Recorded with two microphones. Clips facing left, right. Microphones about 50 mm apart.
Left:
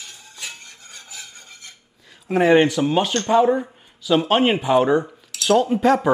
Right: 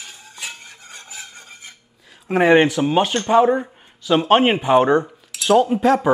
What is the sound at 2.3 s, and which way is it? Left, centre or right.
Dishes, right.